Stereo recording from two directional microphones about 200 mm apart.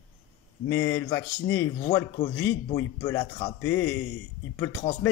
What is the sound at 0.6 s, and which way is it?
Speech, 15° left (ahead or behind).